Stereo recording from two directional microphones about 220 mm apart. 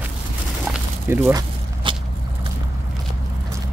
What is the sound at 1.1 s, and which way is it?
Speech, 10° right (ahead or behind).